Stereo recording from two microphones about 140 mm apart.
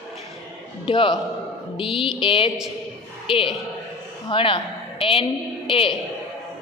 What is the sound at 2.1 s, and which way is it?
A woman's voice, 40° left (ahead or behind).